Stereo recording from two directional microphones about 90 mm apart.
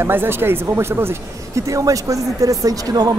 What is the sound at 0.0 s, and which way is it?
Speech, 25° right (ahead or behind).